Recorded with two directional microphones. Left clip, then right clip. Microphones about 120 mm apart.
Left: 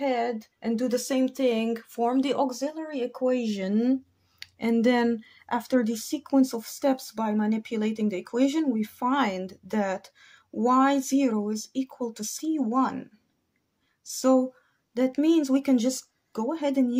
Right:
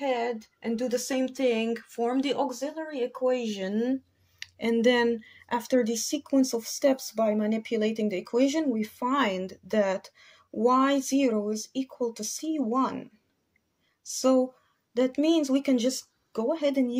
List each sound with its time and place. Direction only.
0.0 s speech: 45° left (ahead or behind); by 4.0 s 65° left (ahead or behind)
4.4 s a sound: 40° left (ahead or behind)
4.7 s speech: 50° left (ahead or behind)
14.0 s speech: 35° left (ahead or behind)